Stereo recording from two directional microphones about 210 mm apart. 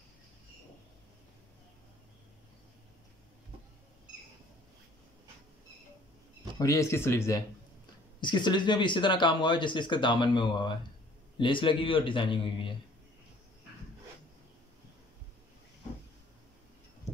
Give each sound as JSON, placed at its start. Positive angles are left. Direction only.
{"t": 6.6, "sound": "speech", "side_deg": 15}